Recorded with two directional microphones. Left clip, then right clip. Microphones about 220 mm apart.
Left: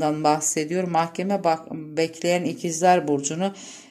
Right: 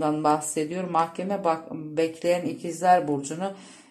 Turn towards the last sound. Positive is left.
turn(degrees=45)  # may be behind; listen again after turning